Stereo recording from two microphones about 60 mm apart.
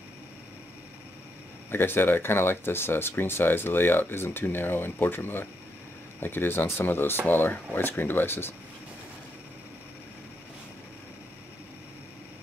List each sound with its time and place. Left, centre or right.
1.7 s speech: left